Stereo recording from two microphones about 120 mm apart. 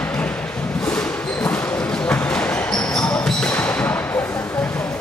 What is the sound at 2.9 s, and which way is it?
Basketball bounce, 5° left (ahead or behind).